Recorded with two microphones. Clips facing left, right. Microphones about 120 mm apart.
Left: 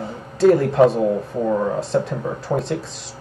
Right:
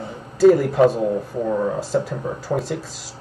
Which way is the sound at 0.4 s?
Centre (ahead or behind).